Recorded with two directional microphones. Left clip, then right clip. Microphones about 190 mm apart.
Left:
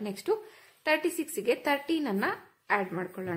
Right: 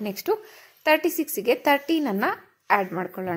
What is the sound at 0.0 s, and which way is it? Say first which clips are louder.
A woman's voice: right 5 dB; 20° right (ahead or behind).